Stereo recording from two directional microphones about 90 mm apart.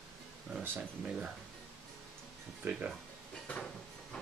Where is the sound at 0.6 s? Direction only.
15° right (ahead or behind).